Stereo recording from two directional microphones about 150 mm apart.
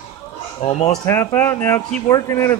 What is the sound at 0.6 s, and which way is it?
Speech, 45° left (ahead or behind).